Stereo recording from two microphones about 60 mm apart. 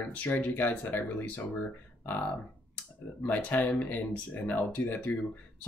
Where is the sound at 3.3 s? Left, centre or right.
Left.